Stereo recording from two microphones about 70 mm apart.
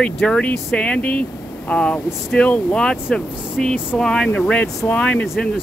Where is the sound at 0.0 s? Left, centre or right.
Centre.